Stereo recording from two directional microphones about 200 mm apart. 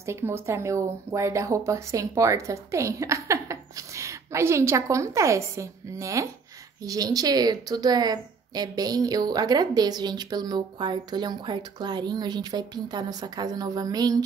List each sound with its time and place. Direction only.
0.0 s a woman's voice: 15° right (ahead or behind)